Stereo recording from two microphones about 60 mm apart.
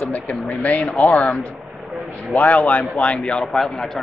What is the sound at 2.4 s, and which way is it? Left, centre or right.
Speech, left.